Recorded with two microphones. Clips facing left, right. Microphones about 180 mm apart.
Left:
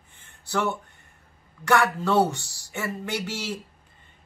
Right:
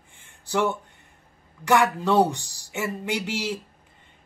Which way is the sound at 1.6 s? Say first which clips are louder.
Right 1 dB; 15° right (ahead or behind).